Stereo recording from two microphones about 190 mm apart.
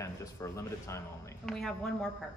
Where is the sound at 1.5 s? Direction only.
Centre (ahead or behind).